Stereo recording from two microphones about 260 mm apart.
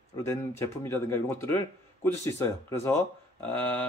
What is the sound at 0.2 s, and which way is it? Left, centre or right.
A man's voice, centre.